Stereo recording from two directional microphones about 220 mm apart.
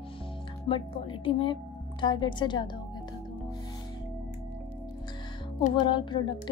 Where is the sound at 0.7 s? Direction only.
25° left (ahead or behind).